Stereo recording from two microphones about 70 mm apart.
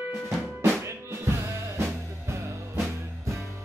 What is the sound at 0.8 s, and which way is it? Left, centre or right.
Music, right.